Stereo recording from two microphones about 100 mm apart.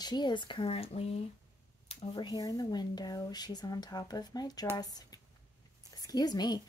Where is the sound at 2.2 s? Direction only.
40° left (ahead or behind).